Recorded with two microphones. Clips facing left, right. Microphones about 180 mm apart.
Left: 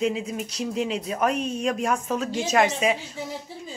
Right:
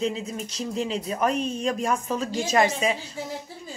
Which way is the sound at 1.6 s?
5° left (ahead or behind).